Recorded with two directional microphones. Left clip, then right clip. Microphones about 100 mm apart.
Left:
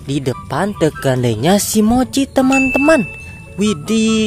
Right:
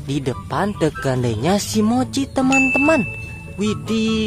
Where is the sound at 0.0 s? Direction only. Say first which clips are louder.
Left 4 dB; 35° left (ahead or behind).